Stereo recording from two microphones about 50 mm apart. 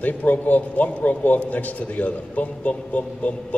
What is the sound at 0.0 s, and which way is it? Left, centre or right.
A man's voice, left.